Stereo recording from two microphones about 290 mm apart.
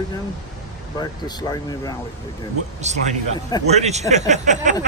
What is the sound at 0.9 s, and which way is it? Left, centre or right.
Speech, centre.